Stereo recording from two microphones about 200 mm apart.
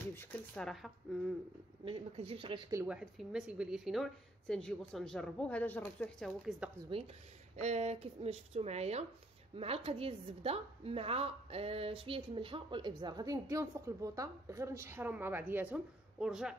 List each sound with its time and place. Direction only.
0.1 s a sound: 10° left (ahead or behind)
1.9 s a woman's voice: 30° right (ahead or behind)
2.7 s a woman's voice: 10° right (ahead or behind)
6.9 s a woman's voice: 25° right (ahead or behind); by 16.5 s 5° right (ahead or behind)